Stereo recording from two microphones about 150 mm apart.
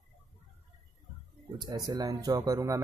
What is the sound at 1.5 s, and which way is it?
Speech, 30° right (ahead or behind).